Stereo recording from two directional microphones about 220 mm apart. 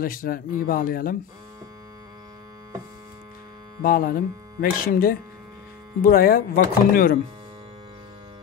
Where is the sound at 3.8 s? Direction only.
40° left (ahead or behind).